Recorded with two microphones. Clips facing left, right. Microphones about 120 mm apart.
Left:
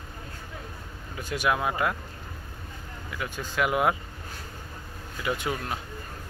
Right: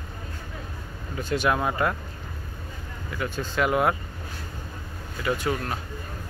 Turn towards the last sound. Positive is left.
turn(degrees=15)  # may be behind; listen again after turning